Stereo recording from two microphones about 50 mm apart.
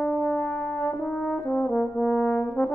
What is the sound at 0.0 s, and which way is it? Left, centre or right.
Brass instrument, centre.